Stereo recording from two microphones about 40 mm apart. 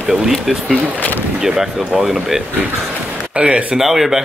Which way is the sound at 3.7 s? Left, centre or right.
Centre.